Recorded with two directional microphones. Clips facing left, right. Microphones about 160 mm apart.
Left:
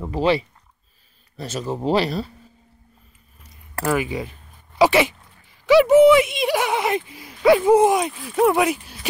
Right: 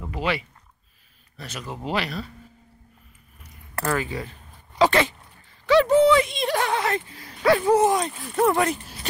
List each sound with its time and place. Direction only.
0.0 s speech: 30° left (ahead or behind)
3.8 s speech: 15° left (ahead or behind)
5.7 s a sound: 10° left (ahead or behind)
8.2 s speech: centre (ahead or behind)